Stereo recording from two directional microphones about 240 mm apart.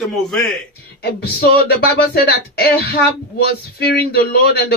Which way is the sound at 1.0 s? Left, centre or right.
Left.